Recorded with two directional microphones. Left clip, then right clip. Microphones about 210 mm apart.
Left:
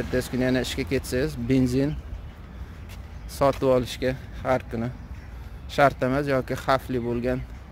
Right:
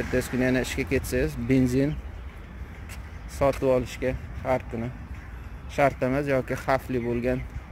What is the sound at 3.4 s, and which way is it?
Speech, 15° left (ahead or behind).